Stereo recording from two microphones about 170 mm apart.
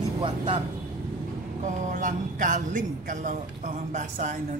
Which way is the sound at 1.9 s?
50° right (ahead or behind).